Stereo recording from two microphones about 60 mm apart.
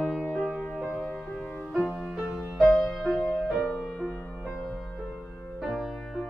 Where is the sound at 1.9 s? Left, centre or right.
Centre.